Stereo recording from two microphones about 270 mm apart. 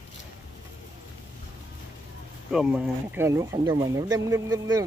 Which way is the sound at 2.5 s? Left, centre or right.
Centre.